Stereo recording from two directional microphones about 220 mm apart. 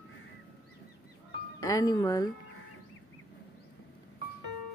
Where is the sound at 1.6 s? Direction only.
15° left (ahead or behind).